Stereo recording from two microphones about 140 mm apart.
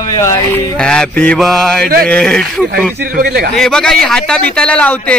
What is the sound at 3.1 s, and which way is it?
Speech, 90° right.